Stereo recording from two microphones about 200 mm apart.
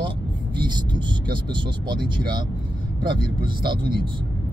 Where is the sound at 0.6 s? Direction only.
25° right (ahead or behind).